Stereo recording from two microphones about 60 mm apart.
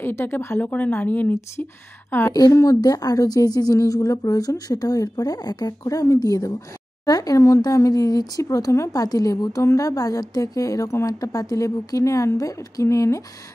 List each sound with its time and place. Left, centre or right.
0.0 s speech: left
0.6 s speech: left
1.3 s a woman's voice: left
2.5 s a woman's voice: left
12.4 s a woman's voice: left
12.8 s speech: left